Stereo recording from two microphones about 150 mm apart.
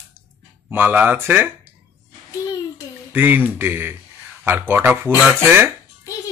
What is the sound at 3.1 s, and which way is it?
Speech, 15° right (ahead or behind).